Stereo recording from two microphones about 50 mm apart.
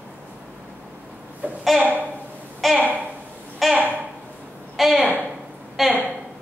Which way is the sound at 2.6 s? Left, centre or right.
Centre.